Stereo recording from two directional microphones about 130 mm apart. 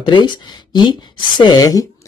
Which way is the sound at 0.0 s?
35° left (ahead or behind).